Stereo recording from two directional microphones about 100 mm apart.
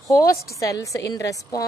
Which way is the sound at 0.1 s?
35° left (ahead or behind).